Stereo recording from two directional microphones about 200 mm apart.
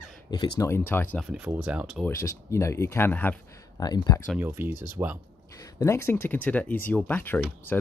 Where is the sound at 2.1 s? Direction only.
15° left (ahead or behind).